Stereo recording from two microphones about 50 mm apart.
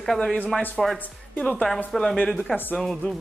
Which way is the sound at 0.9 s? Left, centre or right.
Left.